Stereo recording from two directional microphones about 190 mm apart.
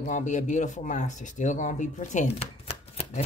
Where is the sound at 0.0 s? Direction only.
40° left (ahead or behind).